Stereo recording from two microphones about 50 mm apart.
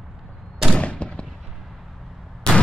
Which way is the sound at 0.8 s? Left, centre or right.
Left.